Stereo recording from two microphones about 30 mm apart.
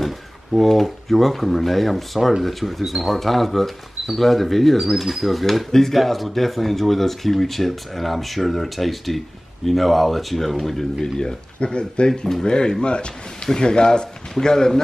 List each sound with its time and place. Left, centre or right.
0.0 s speech: centre
5.7 s speech: centre
5.9 s speech: centre
11.1 s a man's voice: left